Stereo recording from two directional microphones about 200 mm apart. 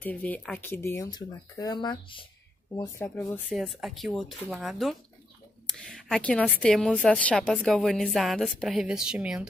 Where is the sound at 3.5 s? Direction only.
Centre (ahead or behind).